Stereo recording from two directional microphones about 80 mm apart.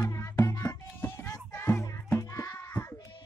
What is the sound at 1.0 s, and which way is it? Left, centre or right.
Child singing, left.